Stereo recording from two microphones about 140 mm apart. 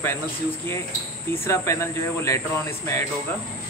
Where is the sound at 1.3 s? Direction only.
20° left (ahead or behind).